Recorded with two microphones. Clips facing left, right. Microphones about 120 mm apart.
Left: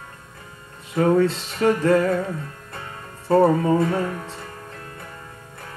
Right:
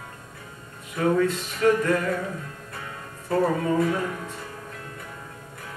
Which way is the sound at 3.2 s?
30° left (ahead or behind).